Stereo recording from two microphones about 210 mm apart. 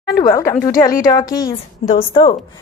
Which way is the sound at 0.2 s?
15° left (ahead or behind).